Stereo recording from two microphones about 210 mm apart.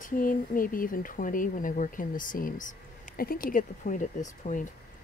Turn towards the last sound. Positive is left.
turn(degrees=35)  # may be behind; listen again after turning